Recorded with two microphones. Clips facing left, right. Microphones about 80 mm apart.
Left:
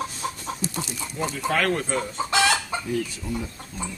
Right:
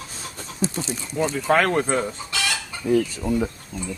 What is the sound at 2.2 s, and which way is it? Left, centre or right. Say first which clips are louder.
Chicken: left 6 dB; left.